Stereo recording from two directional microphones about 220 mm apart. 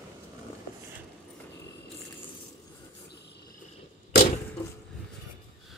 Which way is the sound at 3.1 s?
50° left (ahead or behind).